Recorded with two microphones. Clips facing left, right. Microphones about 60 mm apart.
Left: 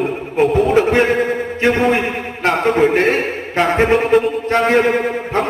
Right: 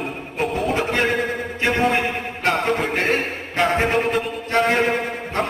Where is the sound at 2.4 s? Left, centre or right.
Left.